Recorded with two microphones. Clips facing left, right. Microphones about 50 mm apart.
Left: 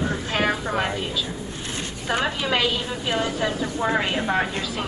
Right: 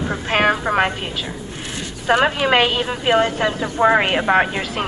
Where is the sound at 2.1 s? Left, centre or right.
Right.